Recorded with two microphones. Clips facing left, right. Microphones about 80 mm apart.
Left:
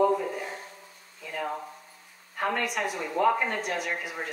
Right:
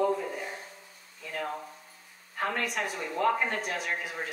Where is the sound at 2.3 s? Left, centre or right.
Centre.